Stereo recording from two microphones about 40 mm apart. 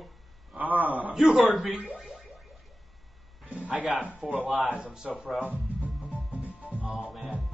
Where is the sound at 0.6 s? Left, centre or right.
Right.